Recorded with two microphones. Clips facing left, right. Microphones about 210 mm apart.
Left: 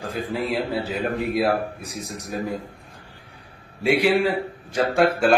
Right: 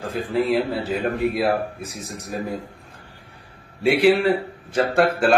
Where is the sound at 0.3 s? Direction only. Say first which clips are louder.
Right 5 dB; centre (ahead or behind).